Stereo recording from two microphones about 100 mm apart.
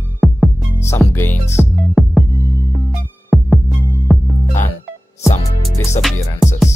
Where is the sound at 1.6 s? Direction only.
Centre (ahead or behind).